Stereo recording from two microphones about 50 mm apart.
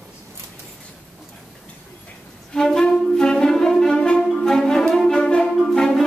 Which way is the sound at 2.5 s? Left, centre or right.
Centre.